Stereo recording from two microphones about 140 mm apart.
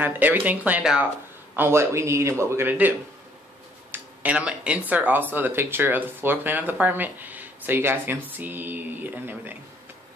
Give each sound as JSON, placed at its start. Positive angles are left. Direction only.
{"t": 0.0, "sound": "a man's voice", "side_deg": -15}
{"t": 3.9, "sound": "speech", "side_deg": -10}